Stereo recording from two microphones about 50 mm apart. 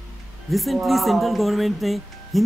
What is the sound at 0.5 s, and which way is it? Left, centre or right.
Speech, centre.